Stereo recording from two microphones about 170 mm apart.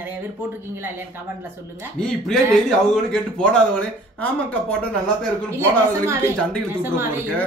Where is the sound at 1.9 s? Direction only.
5° left (ahead or behind).